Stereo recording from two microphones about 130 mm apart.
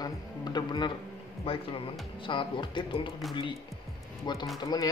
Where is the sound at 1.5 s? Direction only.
50° left (ahead or behind).